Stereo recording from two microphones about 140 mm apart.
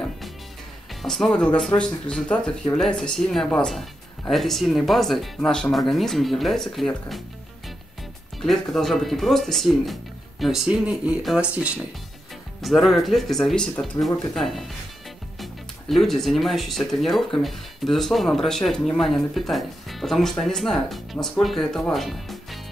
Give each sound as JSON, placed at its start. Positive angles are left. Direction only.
{"t": 1.0, "sound": "speech", "side_deg": 5}
{"t": 8.4, "sound": "speech", "side_deg": 0}